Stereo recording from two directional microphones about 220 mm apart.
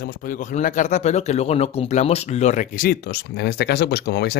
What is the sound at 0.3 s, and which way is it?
Speech, 35° left (ahead or behind).